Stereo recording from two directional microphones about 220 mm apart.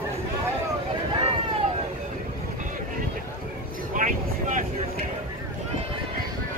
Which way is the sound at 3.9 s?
35° right (ahead or behind).